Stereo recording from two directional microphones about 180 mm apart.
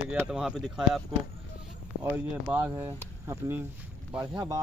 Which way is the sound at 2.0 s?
10° right (ahead or behind).